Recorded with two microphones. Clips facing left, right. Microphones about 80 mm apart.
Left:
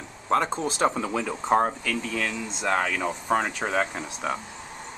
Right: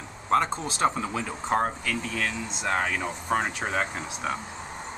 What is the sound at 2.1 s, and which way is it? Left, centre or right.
Speech, centre.